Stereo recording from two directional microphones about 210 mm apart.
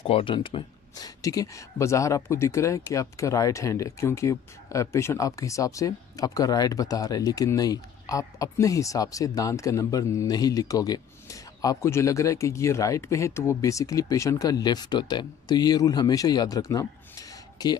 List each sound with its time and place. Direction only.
0.0 s speech: 25° left (ahead or behind)